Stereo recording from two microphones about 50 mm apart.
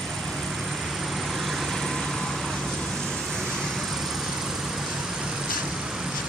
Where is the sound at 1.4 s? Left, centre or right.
Centre.